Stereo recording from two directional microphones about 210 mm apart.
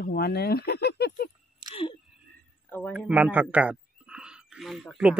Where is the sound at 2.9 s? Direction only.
5° right (ahead or behind).